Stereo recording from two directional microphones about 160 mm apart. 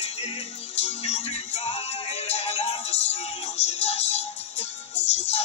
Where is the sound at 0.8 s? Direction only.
40° left (ahead or behind).